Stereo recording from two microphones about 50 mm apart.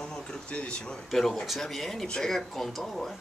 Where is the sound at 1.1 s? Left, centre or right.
Centre.